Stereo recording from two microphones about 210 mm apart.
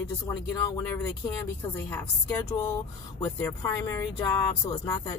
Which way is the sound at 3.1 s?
15° left (ahead or behind).